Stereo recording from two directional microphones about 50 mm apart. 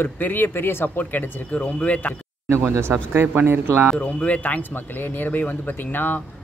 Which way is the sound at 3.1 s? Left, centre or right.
Right.